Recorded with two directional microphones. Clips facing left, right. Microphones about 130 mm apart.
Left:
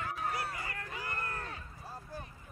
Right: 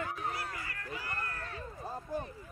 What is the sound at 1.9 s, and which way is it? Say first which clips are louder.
Speech: right 7 dB; 20° right (ahead or behind).